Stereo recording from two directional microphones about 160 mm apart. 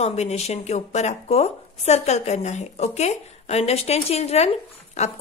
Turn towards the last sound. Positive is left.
turn(degrees=40)  # may be behind; listen again after turning